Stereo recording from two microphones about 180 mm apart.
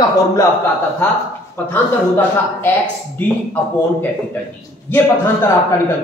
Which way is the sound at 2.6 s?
10° left (ahead or behind).